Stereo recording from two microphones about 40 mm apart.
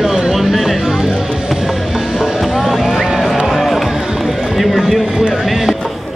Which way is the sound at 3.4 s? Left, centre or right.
Centre.